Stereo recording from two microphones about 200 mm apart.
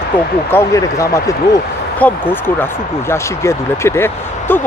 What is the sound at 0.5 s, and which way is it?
Speech, 15° left (ahead or behind).